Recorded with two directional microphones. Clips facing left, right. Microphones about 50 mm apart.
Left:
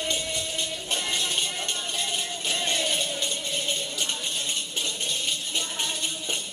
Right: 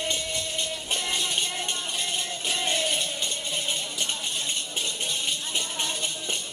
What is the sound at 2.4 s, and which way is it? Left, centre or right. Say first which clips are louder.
Music: right 1 dB; centre.